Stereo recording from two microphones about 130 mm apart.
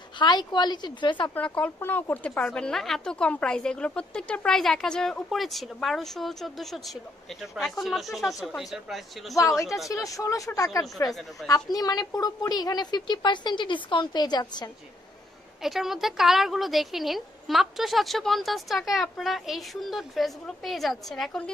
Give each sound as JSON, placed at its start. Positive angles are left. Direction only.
{"t": 0.2, "sound": "a woman's voice", "side_deg": 35}
{"t": 1.3, "sound": "a woman's voice", "side_deg": 10}
{"t": 9.3, "sound": "a woman's voice", "side_deg": 25}
{"t": 15.6, "sound": "a woman's voice", "side_deg": 0}